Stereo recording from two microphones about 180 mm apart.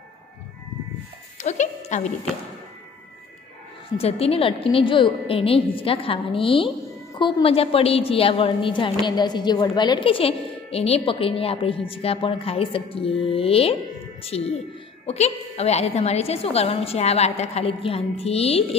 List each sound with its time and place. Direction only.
1.4 s speech: 40° left (ahead or behind)
4.0 s a woman's voice: 35° left (ahead or behind)